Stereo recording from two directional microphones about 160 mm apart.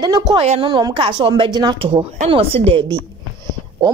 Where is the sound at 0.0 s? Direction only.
25° right (ahead or behind).